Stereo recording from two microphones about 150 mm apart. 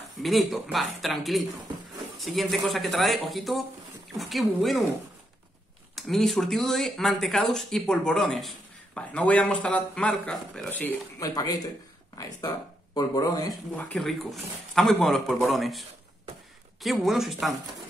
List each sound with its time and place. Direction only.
0.2 s speech: centre (ahead or behind)
5.9 s speech: centre (ahead or behind)
11.2 s speech: 25° left (ahead or behind)
12.9 s speech: 25° left (ahead or behind)
13.7 s speech: 5° left (ahead or behind)
16.8 s speech: centre (ahead or behind)